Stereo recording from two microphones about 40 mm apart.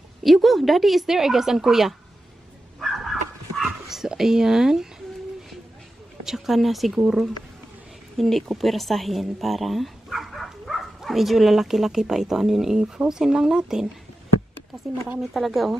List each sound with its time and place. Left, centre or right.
0.2 s speech: centre
2.8 s dog: centre
6.2 s speech: centre
8.2 s speech: centre
15.3 s speech: centre